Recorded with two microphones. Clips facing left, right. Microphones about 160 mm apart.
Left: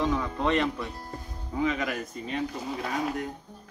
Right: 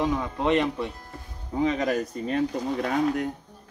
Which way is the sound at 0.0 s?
20° right (ahead or behind).